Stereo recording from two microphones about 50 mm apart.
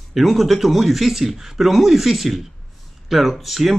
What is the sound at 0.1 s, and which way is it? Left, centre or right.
Speech, centre.